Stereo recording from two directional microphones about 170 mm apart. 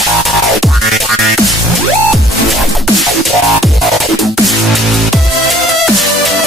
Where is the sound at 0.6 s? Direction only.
Centre (ahead or behind).